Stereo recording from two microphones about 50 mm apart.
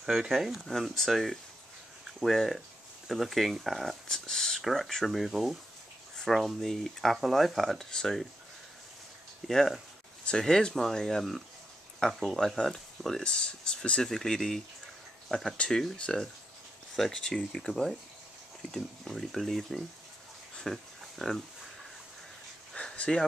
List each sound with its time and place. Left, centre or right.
0.0 s speech: centre
0.7 s speech: centre
4.3 s whispering: centre
4.6 s speech: centre
6.1 s a sound: centre
6.6 s speech: centre
9.5 s speech: centre
13.2 s speech: left
15.3 s speech: centre
20.6 s a sound: centre
22.8 s a sound: left